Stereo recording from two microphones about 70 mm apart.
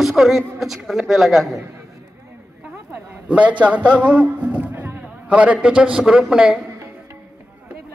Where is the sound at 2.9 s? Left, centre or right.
Right.